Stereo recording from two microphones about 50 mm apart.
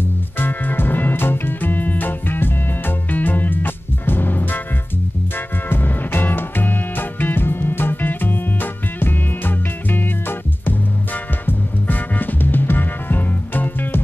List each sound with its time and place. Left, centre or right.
0.4 s music: left
5.7 s music: left